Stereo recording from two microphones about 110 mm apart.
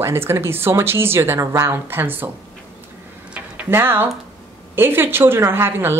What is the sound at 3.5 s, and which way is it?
A woman's voice, 20° right (ahead or behind).